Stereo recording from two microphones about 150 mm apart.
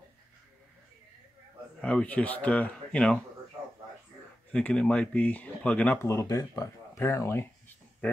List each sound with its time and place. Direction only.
1.8 s speech: 5° left (ahead or behind)
4.5 s speech: 5° left (ahead or behind)
6.0 s speech: 20° left (ahead or behind)